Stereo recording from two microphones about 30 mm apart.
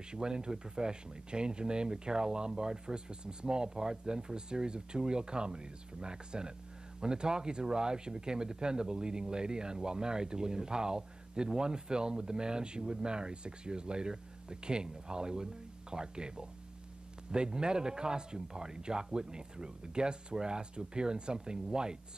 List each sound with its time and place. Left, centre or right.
0.1 s speech: right